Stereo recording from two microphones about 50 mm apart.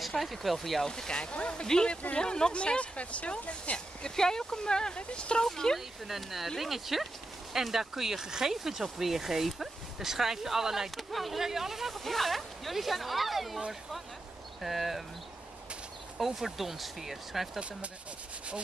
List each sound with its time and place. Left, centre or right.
0.0 s speech: centre
5.8 s speech: centre
14.6 s speech: centre
16.2 s speech: centre